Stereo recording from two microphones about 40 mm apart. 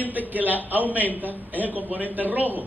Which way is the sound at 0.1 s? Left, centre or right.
Right.